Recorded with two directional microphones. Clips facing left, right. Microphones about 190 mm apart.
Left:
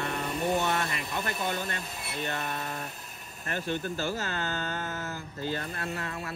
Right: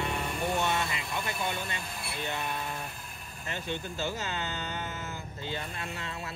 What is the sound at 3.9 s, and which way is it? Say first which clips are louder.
Speech: left 2 dB; 20° right (ahead or behind).